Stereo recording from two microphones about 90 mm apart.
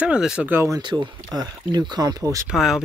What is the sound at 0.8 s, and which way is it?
Speech, 55° right (ahead or behind).